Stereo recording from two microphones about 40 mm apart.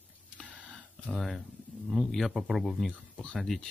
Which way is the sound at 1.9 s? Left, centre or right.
Centre.